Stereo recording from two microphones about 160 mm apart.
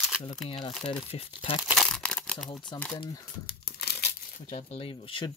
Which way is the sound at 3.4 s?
75° left (ahead or behind).